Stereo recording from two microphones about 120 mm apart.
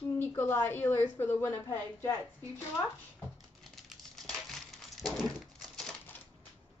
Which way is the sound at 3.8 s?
5° left (ahead or behind).